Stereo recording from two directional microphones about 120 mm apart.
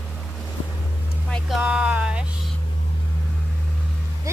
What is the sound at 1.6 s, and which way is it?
Music, 10° right (ahead or behind).